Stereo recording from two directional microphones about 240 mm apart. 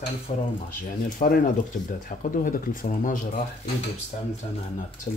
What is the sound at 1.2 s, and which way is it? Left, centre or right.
Speech, left.